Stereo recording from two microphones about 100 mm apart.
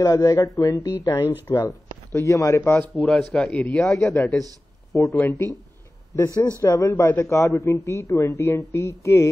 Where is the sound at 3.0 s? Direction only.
5° left (ahead or behind).